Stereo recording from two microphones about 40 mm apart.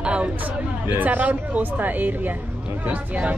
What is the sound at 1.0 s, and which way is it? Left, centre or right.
Speech, right.